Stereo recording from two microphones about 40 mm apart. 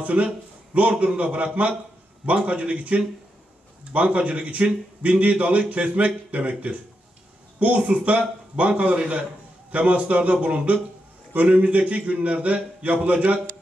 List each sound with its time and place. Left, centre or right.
0.0 s a man's voice: right